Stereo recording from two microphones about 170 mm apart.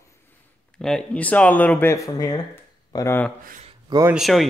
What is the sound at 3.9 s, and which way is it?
Speech, 20° right (ahead or behind).